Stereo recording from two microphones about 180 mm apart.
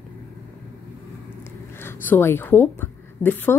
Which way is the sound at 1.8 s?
10° left (ahead or behind).